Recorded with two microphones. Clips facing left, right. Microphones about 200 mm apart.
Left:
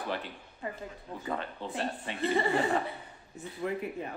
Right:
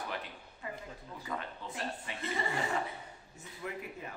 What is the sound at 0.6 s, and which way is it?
Speech, 35° left (ahead or behind).